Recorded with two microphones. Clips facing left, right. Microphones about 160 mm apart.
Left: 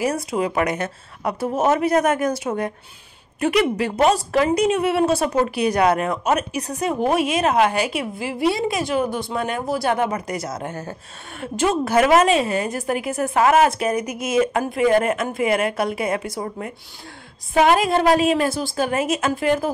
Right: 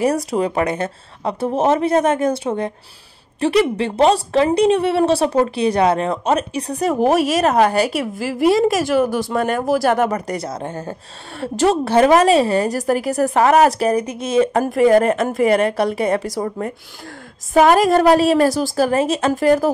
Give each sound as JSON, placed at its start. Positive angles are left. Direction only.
{"t": 0.0, "sound": "a woman's voice", "side_deg": -35}
{"t": 16.3, "sound": "a woman's voice", "side_deg": -45}